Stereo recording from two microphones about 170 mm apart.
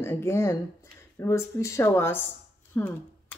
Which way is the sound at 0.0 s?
15° left (ahead or behind).